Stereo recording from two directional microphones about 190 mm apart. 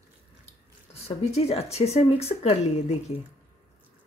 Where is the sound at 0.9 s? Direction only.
35° left (ahead or behind).